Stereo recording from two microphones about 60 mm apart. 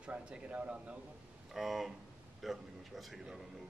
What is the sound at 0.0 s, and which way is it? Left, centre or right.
Speech, centre.